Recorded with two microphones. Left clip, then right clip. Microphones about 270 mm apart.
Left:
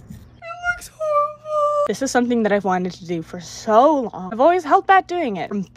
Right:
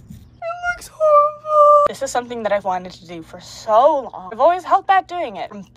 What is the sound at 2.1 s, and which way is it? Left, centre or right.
Speech, left.